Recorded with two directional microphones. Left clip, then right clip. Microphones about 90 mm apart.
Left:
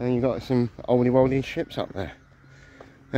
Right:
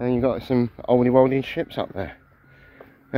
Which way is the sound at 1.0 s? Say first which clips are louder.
Right 4 dB; 25° left (ahead or behind).